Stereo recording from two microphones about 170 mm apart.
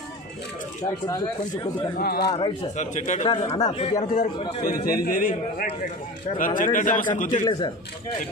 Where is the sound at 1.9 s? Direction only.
70° left (ahead or behind).